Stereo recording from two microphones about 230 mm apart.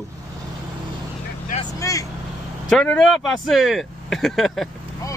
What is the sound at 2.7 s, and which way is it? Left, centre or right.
Speech, centre.